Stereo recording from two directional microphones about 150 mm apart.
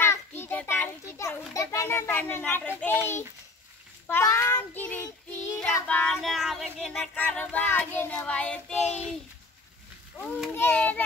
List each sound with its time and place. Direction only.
0.0 s a child's voice: 15° left (ahead or behind)
4.1 s child singing: 20° left (ahead or behind); by 6.9 s centre (ahead or behind)
6.9 s child singing: 10° left (ahead or behind)
10.5 s child singing: 10° left (ahead or behind)